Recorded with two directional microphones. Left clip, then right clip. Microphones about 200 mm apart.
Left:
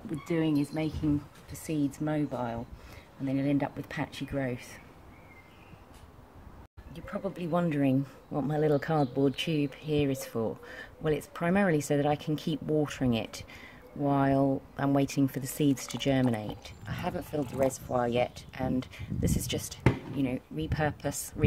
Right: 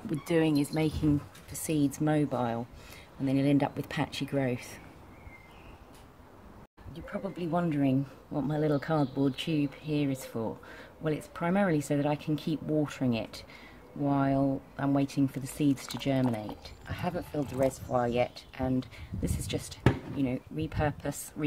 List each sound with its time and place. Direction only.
0.2 s speech: 30° right (ahead or behind); by 4.7 s 10° right (ahead or behind)
7.1 s speech: 35° left (ahead or behind)